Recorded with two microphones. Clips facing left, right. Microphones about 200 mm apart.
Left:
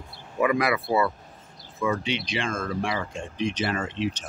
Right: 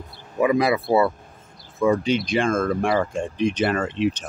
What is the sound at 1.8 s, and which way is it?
Speech, 40° right (ahead or behind).